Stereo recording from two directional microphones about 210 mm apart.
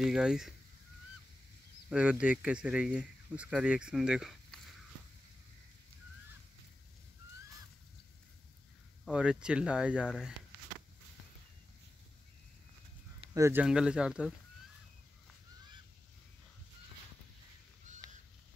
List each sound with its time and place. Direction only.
0.0 s speech: 5° right (ahead or behind)
1.9 s speech: 5° right (ahead or behind)
9.0 s speech: 5° right (ahead or behind)
13.3 s speech: 10° right (ahead or behind)
18.0 s a sound: 20° right (ahead or behind)